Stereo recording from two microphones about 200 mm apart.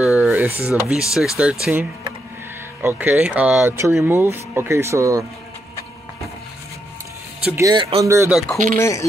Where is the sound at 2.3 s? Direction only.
10° right (ahead or behind).